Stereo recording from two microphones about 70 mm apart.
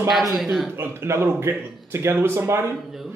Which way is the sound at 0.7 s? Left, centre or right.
Right.